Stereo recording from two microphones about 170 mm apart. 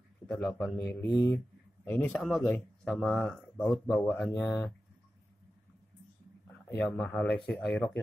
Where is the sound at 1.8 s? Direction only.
5° left (ahead or behind).